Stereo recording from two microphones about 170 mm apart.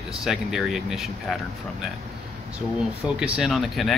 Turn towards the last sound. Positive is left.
turn(degrees=0)  # may be behind; listen again after turning